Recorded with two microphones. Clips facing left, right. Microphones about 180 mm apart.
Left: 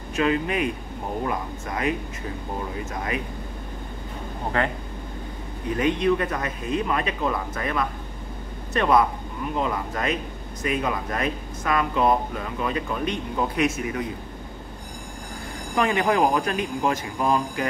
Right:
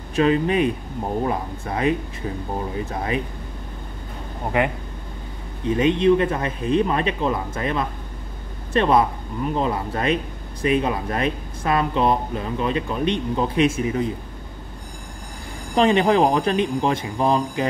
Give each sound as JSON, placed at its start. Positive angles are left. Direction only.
{"t": 0.1, "sound": "speech", "side_deg": -30}
{"t": 4.6, "sound": "speech", "side_deg": -15}
{"t": 15.7, "sound": "speech", "side_deg": -25}